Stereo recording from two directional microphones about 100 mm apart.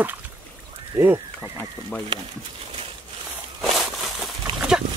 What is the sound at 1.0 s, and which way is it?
Speech, 20° right (ahead or behind).